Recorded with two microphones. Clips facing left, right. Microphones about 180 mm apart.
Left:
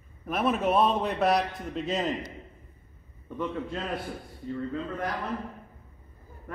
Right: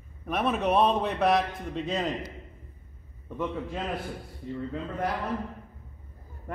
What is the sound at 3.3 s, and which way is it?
Speech, 5° right (ahead or behind).